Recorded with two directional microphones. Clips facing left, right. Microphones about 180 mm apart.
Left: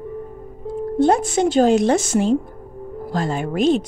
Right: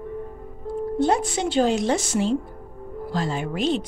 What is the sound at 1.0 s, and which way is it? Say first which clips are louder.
Speech: left 6 dB; 50° left (ahead or behind).